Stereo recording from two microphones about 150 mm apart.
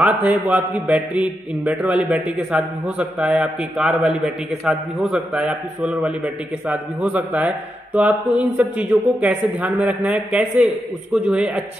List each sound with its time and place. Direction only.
0.0 s a man's voice: 10° right (ahead or behind)